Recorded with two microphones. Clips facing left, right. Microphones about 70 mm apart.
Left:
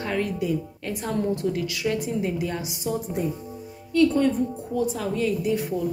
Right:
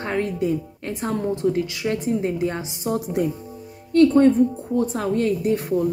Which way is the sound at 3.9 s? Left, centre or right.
Right.